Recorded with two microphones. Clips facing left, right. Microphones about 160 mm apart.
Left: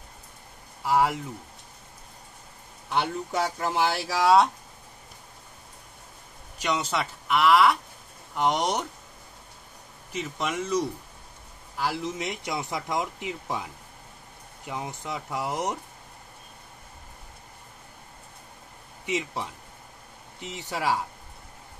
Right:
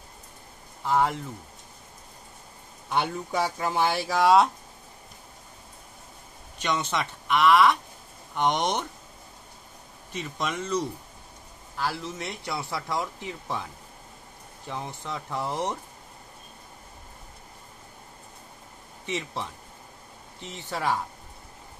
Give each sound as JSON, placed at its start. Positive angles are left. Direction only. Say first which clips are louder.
{"t": 0.8, "sound": "speech", "louder": "left 1 dB", "side_deg": 10}
{"t": 2.9, "sound": "speech", "louder": "even", "side_deg": 0}
{"t": 6.6, "sound": "speech", "louder": "even", "side_deg": 10}
{"t": 10.1, "sound": "speech", "louder": "left 1 dB", "side_deg": 5}
{"t": 14.7, "sound": "speech", "louder": "left 1 dB", "side_deg": 15}
{"t": 19.0, "sound": "speech", "louder": "left 2 dB", "side_deg": 10}